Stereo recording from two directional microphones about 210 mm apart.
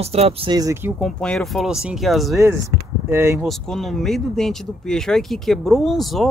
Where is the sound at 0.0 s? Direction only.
30° right (ahead or behind); by 0.9 s 15° right (ahead or behind).